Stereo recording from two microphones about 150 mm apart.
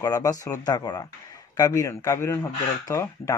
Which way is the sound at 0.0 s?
25° left (ahead or behind).